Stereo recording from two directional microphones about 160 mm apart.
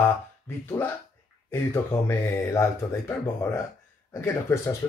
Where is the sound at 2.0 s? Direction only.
15° left (ahead or behind).